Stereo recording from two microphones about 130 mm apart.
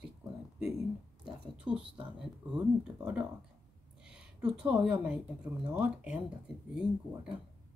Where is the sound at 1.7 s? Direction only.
10° right (ahead or behind).